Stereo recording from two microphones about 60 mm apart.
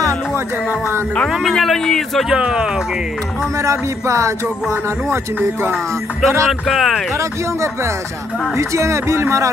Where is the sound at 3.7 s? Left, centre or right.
Right.